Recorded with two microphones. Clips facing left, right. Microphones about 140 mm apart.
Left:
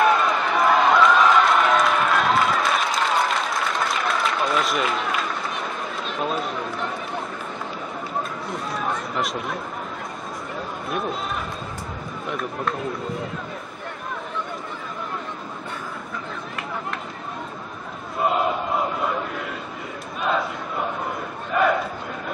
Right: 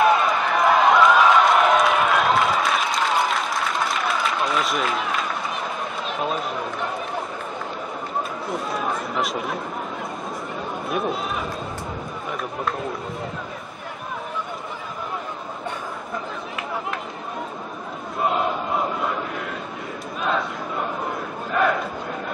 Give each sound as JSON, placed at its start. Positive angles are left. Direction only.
{"t": 0.0, "sound": "a sound", "side_deg": 0}
{"t": 8.7, "sound": "chatter", "side_deg": 0}
{"t": 10.9, "sound": "speech", "side_deg": 0}
{"t": 12.3, "sound": "speech", "side_deg": 0}
{"t": 18.2, "sound": "crowd", "side_deg": 0}